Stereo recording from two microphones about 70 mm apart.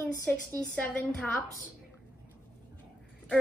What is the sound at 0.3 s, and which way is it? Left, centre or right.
A woman's voice, left.